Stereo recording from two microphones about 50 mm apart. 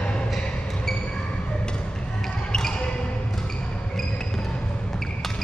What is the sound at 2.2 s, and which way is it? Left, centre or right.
Music, centre.